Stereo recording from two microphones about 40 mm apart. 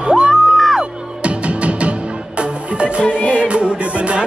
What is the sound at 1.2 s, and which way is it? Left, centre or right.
Music, right.